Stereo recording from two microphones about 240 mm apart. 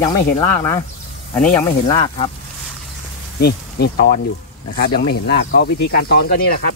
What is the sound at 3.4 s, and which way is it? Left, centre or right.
Speech, left.